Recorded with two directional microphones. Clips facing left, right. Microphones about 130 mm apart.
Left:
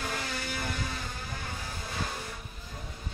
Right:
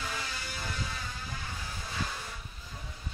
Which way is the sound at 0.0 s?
55° left (ahead or behind).